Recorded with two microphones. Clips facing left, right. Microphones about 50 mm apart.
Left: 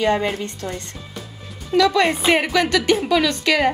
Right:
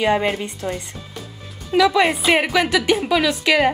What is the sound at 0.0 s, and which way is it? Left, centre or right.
A woman's voice, centre.